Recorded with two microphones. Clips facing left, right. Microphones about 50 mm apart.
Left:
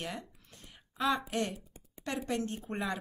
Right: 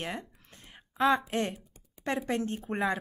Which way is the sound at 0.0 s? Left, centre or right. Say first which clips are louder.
Right 3 dB; right.